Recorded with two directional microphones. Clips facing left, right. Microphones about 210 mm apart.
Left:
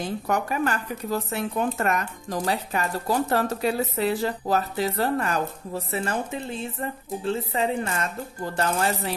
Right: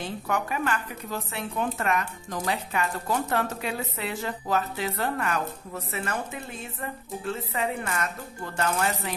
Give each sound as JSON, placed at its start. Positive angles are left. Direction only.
{"t": 0.3, "sound": "speech", "side_deg": 40}